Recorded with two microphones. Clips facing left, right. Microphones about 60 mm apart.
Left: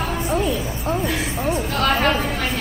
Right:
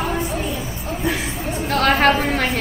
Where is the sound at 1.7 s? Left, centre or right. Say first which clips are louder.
Right 6 dB; right.